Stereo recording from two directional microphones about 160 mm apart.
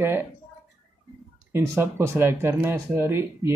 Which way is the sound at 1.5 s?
15° right (ahead or behind).